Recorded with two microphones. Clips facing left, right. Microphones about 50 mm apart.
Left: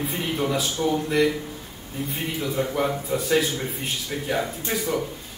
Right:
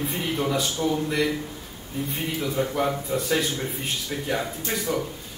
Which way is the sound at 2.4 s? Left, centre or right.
Centre.